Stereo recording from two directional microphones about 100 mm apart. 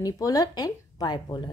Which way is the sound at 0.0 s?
35° left (ahead or behind).